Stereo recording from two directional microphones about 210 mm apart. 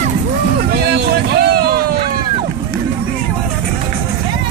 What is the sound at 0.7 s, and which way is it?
Vehicle, 50° right (ahead or behind).